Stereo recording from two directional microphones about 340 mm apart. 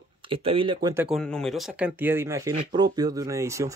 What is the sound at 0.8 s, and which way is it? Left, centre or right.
Speech, centre.